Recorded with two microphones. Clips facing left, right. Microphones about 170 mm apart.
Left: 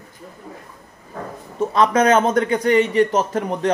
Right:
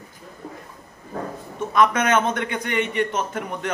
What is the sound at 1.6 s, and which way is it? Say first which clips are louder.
A man's voice: left 4 dB; 35° left (ahead or behind).